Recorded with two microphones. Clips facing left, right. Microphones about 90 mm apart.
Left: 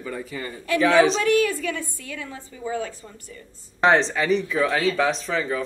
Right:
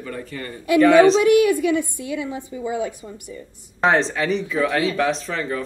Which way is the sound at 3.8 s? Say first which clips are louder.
Even; centre (ahead or behind).